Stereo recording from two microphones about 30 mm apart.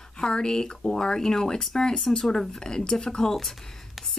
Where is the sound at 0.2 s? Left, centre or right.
Left.